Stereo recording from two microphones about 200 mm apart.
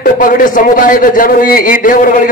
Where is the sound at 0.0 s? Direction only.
45° left (ahead or behind).